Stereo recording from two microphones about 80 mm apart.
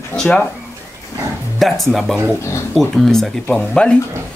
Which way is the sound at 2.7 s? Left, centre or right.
Centre.